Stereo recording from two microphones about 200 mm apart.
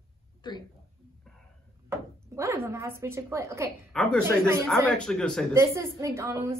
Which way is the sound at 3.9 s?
5° left (ahead or behind).